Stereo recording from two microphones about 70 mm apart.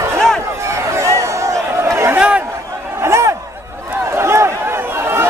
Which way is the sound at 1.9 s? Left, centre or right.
Right.